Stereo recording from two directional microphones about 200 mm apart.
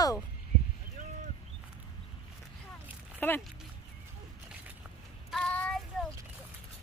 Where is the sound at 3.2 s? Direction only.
10° left (ahead or behind).